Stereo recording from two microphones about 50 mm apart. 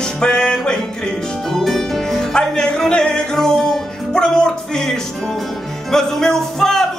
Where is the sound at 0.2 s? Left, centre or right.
Centre.